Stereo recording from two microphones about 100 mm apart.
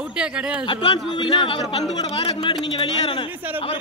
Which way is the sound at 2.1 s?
65° left (ahead or behind).